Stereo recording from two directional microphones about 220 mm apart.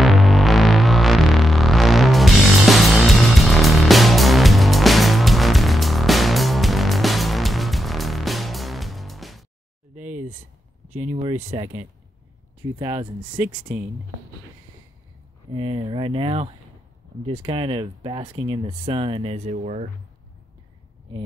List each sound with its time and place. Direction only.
0.0 s music: centre (ahead or behind)
11.0 s a sound: 30° right (ahead or behind)
12.7 s speech: 20° right (ahead or behind)
13.4 s speech: 5° right (ahead or behind)
15.5 s speech: 30° right (ahead or behind)
15.8 s speech: 15° right (ahead or behind)
16.1 s speech: 25° right (ahead or behind)